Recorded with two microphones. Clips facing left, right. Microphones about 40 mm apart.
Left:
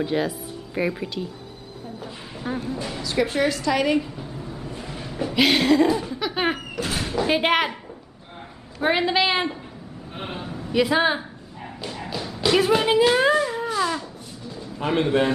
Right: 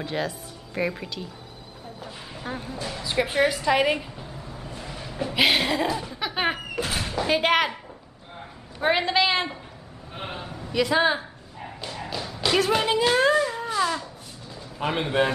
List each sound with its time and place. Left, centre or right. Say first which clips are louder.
0.0 s a woman's voice: left 5 dB; centre
2.4 s speech: left 5 dB; centre
3.0 s a woman's voice: even; centre
4.6 s train: left 3 dB; centre
5.3 s a woman's voice: left 4 dB; centre
6.1 s a sound: left 2 dB; centre
8.8 s a woman's voice: left 1 dB; centre
10.8 s dog: left 1 dB; centre
14.8 s speech: left 3 dB; centre